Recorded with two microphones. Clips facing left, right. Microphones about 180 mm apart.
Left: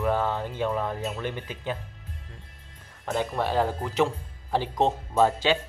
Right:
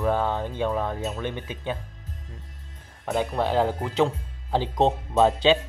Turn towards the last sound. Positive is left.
turn(degrees=-20)  # may be behind; listen again after turning